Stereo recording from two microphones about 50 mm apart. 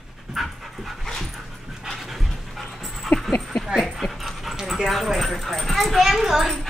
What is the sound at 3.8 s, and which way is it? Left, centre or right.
Speech, centre.